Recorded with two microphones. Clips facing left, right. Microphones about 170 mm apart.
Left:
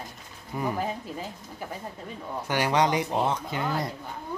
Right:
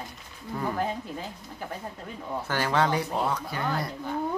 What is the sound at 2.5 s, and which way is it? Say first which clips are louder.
Speech: left 2 dB; 15° left (ahead or behind).